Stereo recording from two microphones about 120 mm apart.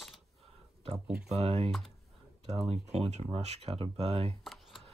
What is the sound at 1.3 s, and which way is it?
Speech, 60° right (ahead or behind).